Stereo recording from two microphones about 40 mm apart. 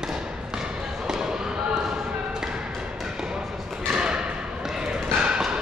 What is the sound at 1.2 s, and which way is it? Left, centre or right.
Basketball bounce, centre.